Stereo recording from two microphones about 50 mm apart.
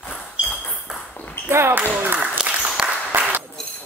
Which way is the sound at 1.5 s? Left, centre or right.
Right.